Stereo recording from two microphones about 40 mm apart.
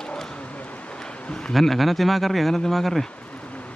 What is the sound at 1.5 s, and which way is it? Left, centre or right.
Speech, centre.